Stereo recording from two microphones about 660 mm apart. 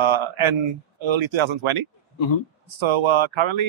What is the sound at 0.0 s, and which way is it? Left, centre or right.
A man's voice, right.